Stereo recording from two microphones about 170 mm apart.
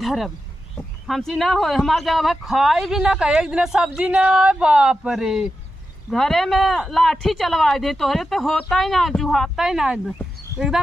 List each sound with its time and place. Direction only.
0.0 s speech: centre (ahead or behind)